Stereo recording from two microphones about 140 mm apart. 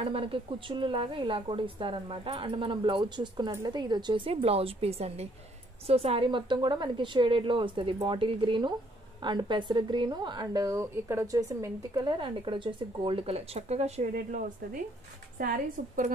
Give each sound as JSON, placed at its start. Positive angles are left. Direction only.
{"t": 0.0, "sound": "a woman's voice", "side_deg": -40}
{"t": 11.9, "sound": "speech", "side_deg": -35}
{"t": 15.3, "sound": "a woman's voice", "side_deg": -85}